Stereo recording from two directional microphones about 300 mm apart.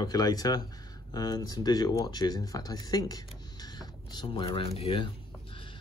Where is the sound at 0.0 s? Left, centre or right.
Centre.